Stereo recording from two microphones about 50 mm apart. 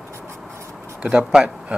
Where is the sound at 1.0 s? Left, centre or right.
Centre.